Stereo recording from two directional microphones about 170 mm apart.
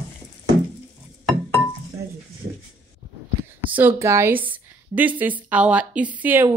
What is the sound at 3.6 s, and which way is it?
A woman's voice, 10° right (ahead or behind).